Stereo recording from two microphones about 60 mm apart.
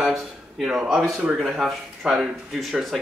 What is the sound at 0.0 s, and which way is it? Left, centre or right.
A man's voice, centre.